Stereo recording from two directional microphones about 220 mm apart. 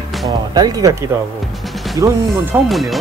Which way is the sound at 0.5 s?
15° right (ahead or behind).